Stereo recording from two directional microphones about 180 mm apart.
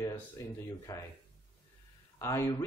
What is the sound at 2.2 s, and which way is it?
Speech, 15° left (ahead or behind).